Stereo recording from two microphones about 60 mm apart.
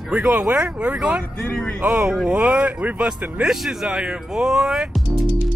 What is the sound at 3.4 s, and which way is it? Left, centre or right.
A man's voice, centre.